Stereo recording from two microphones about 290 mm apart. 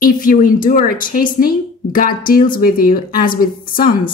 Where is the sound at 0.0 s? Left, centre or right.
Left.